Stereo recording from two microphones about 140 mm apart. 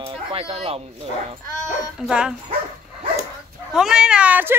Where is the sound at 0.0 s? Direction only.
40° right (ahead or behind).